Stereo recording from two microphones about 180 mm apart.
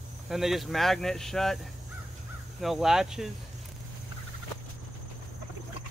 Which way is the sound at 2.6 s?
Centre (ahead or behind).